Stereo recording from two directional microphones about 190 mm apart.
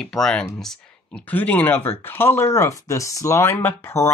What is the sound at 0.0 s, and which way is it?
Speech, centre (ahead or behind).